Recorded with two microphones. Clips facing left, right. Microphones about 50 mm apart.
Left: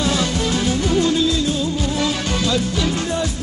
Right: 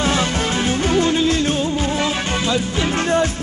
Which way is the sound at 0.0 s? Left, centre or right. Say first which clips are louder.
Right 1 dB; right.